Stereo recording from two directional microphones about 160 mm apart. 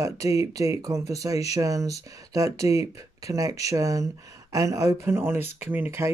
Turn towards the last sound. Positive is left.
turn(degrees=-15)  # may be behind; listen again after turning